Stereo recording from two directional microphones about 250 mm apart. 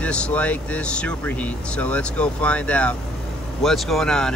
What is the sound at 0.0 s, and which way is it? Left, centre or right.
Speech, centre.